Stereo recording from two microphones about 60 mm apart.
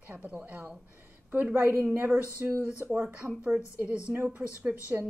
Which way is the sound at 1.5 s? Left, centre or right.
Right.